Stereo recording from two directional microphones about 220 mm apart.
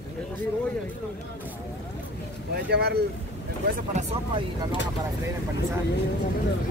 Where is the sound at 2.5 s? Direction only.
45° right (ahead or behind).